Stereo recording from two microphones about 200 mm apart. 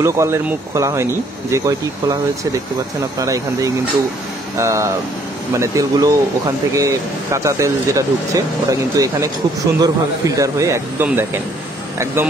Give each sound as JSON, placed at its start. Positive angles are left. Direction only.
{"t": 0.0, "sound": "speech", "side_deg": -15}
{"t": 3.2, "sound": "speech", "side_deg": -15}